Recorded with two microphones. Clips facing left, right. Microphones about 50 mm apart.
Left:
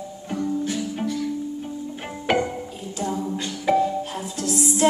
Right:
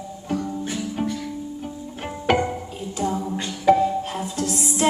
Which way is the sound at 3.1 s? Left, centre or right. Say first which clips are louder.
Right 1 dB; right.